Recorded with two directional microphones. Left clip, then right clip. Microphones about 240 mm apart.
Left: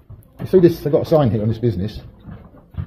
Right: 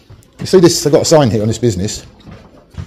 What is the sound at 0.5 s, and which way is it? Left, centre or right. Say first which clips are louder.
Speech: right 5 dB; right.